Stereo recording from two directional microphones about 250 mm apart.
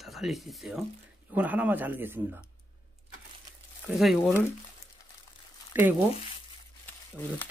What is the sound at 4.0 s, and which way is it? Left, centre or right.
Speech, centre.